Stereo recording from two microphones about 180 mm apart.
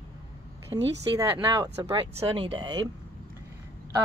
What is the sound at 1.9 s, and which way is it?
Speech, 30° right (ahead or behind).